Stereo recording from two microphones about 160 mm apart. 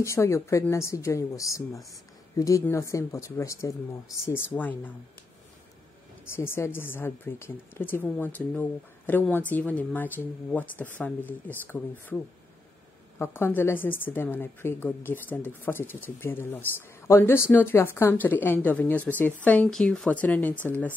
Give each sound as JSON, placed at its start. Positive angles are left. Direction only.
{"t": 0.0, "sound": "a woman's voice", "side_deg": 20}
{"t": 6.2, "sound": "a woman's voice", "side_deg": 15}
{"t": 13.2, "sound": "a woman's voice", "side_deg": 15}